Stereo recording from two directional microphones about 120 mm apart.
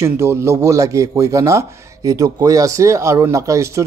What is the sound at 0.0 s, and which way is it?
Speech, 20° right (ahead or behind).